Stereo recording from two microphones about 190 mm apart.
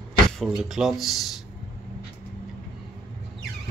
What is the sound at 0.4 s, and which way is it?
Speech, centre (ahead or behind).